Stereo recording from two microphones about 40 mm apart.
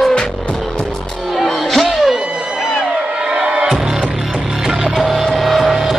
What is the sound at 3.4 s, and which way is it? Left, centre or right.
Music, centre.